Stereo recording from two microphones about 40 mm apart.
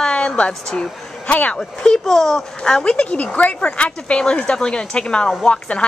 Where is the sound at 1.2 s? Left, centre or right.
Left.